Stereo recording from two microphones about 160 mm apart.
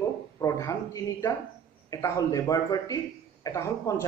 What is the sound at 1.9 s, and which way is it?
A man's voice, 20° left (ahead or behind).